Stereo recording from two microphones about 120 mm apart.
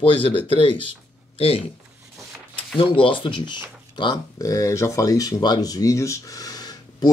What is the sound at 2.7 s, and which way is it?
Speech, 50° left (ahead or behind).